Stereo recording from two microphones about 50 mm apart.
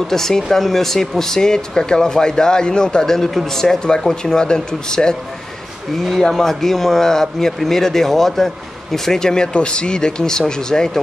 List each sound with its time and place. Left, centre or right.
0.1 s speech: centre
6.0 s speech: centre